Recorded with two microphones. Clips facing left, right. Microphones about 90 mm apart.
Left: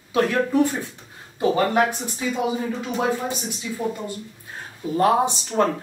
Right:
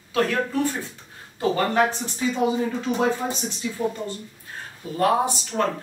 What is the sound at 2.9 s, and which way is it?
Speech, centre (ahead or behind).